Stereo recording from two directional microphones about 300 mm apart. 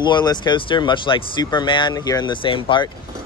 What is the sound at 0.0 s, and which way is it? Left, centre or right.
Speech, centre.